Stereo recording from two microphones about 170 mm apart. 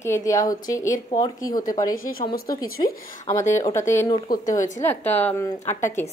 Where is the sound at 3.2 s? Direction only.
20° left (ahead or behind).